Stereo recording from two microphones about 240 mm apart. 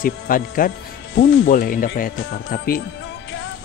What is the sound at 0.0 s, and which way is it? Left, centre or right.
Speech, left.